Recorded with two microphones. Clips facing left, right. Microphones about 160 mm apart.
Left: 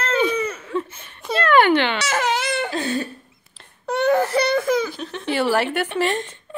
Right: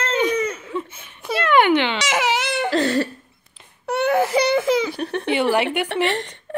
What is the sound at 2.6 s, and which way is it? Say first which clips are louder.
Cough: right 5 dB; 85° right.